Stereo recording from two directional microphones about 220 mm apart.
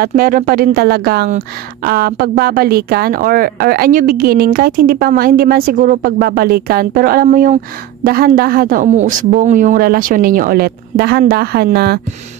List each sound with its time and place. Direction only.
0.0 s speech: 40° right (ahead or behind)